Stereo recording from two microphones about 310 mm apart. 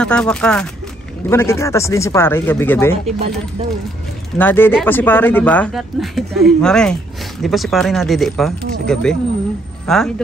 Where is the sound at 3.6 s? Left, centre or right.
Centre.